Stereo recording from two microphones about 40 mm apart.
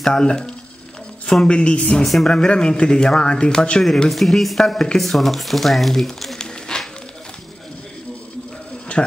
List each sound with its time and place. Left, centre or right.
0.0 s speech: centre
1.6 s speech: left
2.0 s speech: centre
2.3 s speech: left
4.1 s speech: centre
6.3 s a sound: centre
8.9 s a sound: left